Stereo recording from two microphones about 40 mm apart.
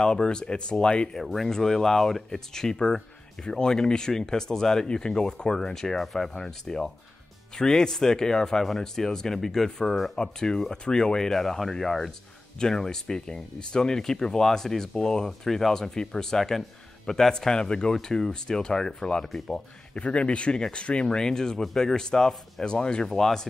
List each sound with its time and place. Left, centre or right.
0.0 s speech: left
1.2 s speech: centre
10.1 s speech: centre
19.2 s speech: centre
19.9 s speech: left
23.0 s speech: centre